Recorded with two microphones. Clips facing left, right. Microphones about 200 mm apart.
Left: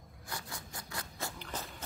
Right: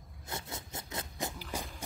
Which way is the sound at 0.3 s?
25° right (ahead or behind).